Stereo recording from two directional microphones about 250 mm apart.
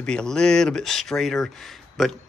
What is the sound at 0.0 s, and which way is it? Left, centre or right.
Speech, centre.